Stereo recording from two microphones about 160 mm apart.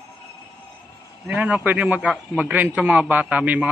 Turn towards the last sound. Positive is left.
turn(degrees=-10)  # may be behind; listen again after turning